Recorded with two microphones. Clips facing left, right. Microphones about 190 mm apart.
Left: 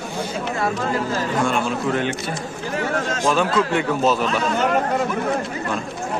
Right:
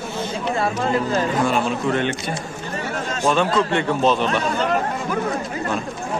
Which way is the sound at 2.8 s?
90° left.